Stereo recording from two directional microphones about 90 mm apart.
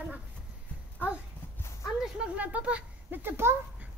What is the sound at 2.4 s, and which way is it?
A child's voice, 15° right (ahead or behind).